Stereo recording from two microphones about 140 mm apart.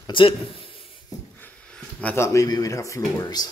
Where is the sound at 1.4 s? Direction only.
10° left (ahead or behind).